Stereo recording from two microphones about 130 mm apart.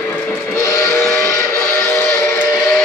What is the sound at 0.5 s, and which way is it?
Train whistle, 20° left (ahead or behind).